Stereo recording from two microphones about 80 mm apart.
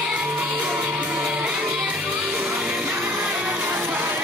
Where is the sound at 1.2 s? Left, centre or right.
Centre.